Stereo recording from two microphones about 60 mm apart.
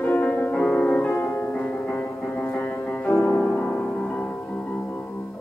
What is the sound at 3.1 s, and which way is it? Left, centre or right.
Music, left.